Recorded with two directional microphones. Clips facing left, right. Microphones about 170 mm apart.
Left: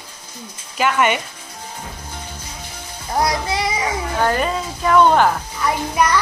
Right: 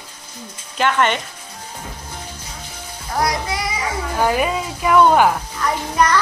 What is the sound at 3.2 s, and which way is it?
Music, 25° left (ahead or behind).